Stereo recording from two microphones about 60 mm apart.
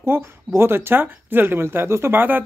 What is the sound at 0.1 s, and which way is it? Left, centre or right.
Speech, right.